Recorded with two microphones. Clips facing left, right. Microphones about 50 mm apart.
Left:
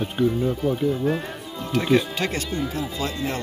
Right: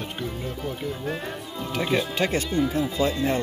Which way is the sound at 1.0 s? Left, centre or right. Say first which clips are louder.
Left 5 dB; centre.